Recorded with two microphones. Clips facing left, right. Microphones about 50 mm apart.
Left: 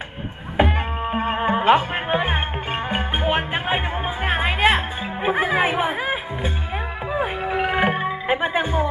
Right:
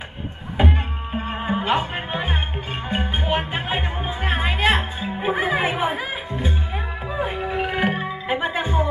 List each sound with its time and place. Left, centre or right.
1.1 s music: left
3.2 s music: centre
5.0 s speech: left
7.1 s music: centre